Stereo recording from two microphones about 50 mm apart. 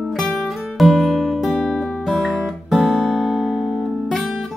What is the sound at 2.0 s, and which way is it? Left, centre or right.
Music, centre.